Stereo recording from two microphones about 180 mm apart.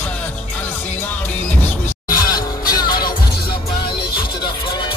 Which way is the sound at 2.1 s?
20° left (ahead or behind).